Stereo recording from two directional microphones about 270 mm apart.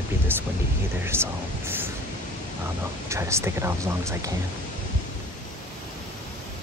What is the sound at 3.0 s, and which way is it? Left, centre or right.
Speech, centre.